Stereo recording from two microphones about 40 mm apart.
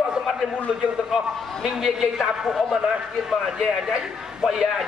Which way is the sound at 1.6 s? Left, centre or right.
Centre.